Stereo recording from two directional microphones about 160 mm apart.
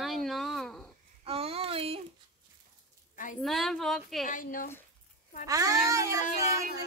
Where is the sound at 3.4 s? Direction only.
Centre (ahead or behind).